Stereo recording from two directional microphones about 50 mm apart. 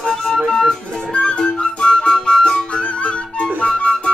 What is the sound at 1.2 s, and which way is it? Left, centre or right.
Music, centre.